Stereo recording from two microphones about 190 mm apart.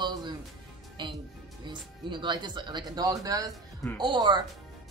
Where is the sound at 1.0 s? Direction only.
25° right (ahead or behind).